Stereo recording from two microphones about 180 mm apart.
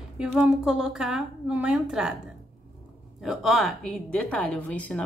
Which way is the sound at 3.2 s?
Centre (ahead or behind).